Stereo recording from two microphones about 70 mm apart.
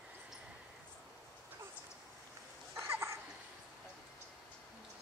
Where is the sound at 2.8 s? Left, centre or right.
Right.